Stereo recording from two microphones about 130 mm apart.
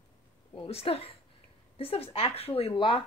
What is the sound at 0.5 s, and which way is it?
Speech, 45° left (ahead or behind).